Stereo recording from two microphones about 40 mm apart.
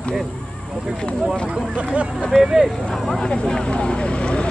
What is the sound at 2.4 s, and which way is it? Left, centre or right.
Speech, centre.